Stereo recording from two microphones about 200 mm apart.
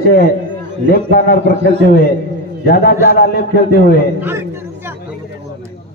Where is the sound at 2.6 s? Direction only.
50° left (ahead or behind).